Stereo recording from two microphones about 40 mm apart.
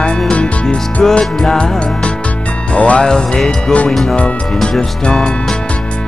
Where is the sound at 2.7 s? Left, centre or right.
Left.